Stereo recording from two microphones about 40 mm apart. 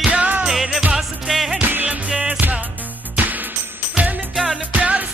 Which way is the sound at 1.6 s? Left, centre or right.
Right.